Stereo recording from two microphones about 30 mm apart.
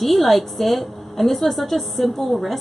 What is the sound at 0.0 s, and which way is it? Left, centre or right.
A woman's voice, centre.